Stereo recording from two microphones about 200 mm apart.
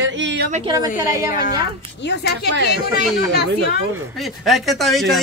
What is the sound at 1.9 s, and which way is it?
Speech, 60° left (ahead or behind).